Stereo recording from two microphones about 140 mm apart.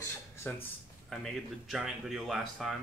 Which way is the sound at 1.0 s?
Centre (ahead or behind).